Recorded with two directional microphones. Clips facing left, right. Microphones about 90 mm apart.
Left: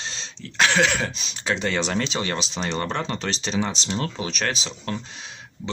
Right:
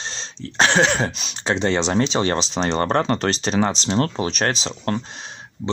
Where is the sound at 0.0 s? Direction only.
40° right (ahead or behind).